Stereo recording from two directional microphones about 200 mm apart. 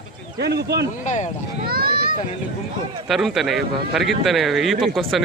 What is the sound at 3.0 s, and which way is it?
A man's voice, centre (ahead or behind).